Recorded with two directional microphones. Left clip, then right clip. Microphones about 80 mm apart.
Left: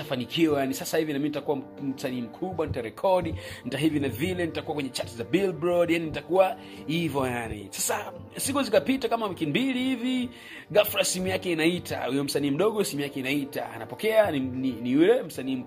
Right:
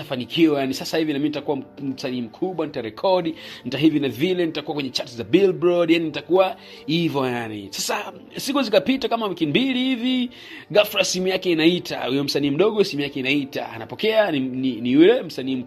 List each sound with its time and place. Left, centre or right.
0.1 s speech: right
7.2 s speech: right
12.1 s speech: right